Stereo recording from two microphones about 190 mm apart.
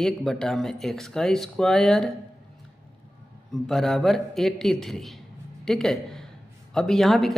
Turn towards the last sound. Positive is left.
turn(degrees=0)  # may be behind; listen again after turning